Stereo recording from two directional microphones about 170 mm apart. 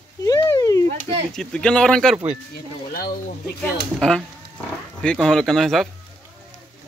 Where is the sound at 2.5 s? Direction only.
60° left (ahead or behind).